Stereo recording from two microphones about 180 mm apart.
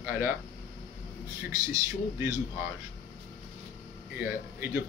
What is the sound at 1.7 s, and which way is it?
Speech, 20° right (ahead or behind).